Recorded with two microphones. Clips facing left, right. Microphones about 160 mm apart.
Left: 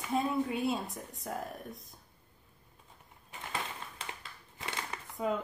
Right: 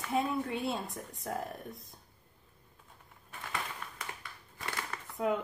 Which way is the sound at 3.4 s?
25° left (ahead or behind).